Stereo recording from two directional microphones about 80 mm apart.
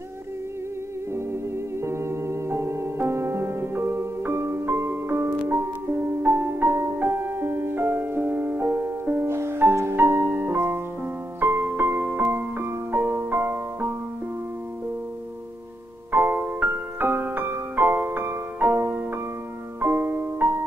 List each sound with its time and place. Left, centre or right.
1.1 s music: right
16.1 s music: right